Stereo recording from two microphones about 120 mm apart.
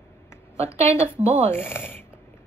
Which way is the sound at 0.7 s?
25° left (ahead or behind).